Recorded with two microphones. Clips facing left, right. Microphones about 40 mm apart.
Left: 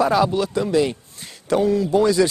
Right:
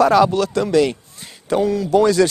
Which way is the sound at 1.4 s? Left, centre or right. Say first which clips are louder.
Even; right.